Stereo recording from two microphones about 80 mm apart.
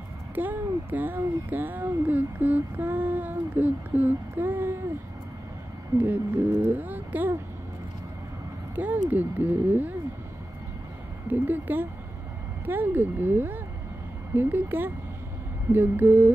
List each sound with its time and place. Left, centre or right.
0.3 s speech: right
5.9 s speech: right
8.7 s speech: right
11.2 s speech: right